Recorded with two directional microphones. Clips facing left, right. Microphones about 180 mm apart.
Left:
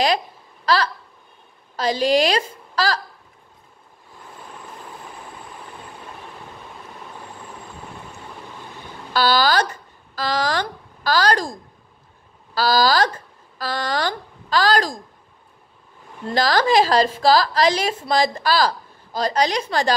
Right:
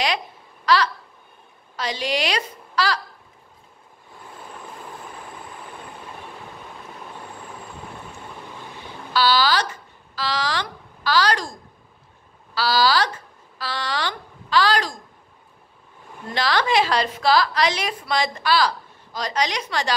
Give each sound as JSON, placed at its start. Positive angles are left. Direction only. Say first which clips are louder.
{"t": 1.8, "sound": "a woman's voice", "louder": "left 7 dB", "side_deg": 35}
{"t": 9.1, "sound": "speech", "louder": "left 2 dB", "side_deg": 45}
{"t": 12.5, "sound": "a woman's voice", "louder": "left 2 dB", "side_deg": 45}
{"t": 16.3, "sound": "a woman's voice", "louder": "left 4 dB", "side_deg": 40}